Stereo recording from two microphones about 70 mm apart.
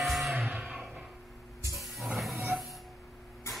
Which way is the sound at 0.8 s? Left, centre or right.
Centre.